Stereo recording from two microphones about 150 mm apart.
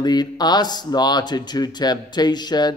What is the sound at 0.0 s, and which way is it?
A man's voice, 25° left (ahead or behind).